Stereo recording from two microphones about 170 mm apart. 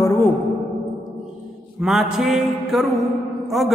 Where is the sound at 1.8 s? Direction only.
Centre (ahead or behind).